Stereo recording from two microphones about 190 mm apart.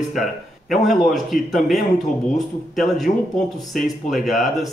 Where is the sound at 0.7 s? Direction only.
Centre (ahead or behind).